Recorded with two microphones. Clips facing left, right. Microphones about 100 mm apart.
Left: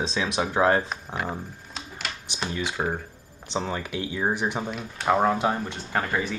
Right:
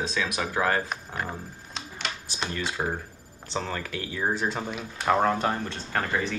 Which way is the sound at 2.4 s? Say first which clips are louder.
Left 2 dB; 15° left (ahead or behind).